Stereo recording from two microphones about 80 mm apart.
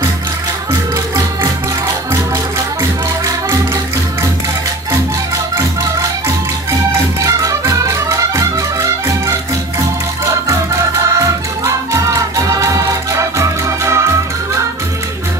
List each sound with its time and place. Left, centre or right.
7.2 s music: right
11.1 s music: right